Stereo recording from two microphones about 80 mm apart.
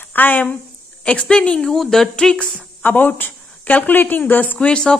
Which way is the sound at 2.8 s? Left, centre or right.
Left.